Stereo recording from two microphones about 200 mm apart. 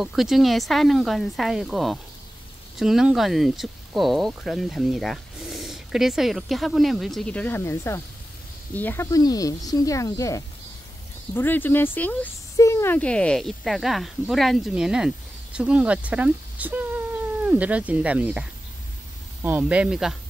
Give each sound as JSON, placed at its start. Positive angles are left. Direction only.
{"t": 0.0, "sound": "speech", "side_deg": 0}